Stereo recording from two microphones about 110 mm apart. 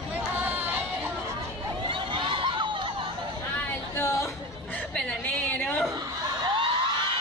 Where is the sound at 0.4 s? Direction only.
15° right (ahead or behind).